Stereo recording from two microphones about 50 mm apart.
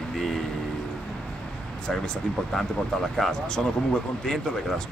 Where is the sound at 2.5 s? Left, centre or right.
Centre.